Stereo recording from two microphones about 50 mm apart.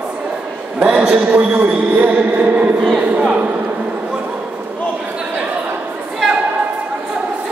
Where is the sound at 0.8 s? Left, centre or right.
Right.